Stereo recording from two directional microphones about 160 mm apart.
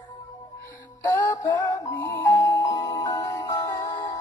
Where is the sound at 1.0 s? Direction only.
20° left (ahead or behind).